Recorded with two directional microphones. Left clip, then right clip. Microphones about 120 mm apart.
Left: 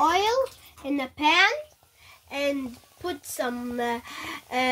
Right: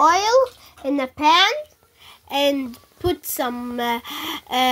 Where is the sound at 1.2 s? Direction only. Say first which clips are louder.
Right 5 dB; 50° right (ahead or behind).